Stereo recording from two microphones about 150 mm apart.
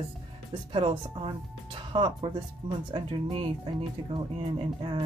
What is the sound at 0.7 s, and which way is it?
Speech, 35° right (ahead or behind).